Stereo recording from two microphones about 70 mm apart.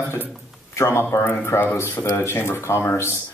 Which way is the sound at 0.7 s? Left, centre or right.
Left.